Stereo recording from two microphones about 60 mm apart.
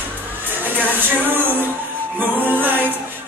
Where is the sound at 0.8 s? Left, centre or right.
Right.